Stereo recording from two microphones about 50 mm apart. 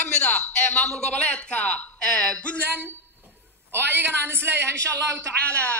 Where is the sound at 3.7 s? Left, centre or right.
Right.